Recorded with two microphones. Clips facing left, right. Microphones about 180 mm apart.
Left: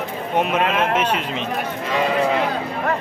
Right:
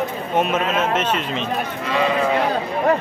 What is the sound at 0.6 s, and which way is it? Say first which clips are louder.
Speech: left 1 dB; 60° left (ahead or behind).